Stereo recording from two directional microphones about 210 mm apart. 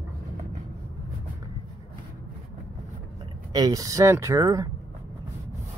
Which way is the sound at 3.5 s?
15° right (ahead or behind).